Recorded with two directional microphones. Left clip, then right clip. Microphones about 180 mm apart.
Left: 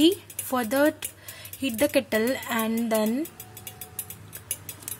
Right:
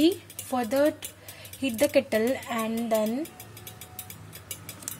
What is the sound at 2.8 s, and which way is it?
Speech, 30° left (ahead or behind).